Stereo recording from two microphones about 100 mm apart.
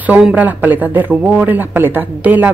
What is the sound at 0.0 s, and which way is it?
A man's voice, 15° right (ahead or behind).